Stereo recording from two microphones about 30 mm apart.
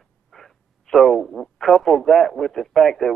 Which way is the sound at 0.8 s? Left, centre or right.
Centre.